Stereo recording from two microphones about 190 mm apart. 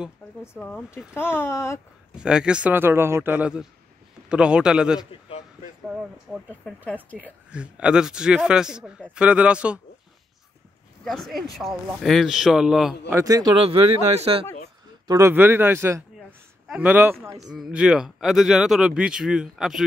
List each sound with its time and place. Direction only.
0.4 s speech: 5° left (ahead or behind)
2.1 s a man's voice: 5° right (ahead or behind)
7.5 s a man's voice: 5° right (ahead or behind)
11.1 s speech: centre (ahead or behind)
13.1 s speech: 20° right (ahead or behind)
15.0 s a man's voice: 15° right (ahead or behind)
16.2 s a sound: centre (ahead or behind)
17.6 s speech: 5° right (ahead or behind)